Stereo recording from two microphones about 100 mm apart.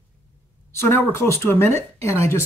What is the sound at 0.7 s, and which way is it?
Speech, 25° left (ahead or behind).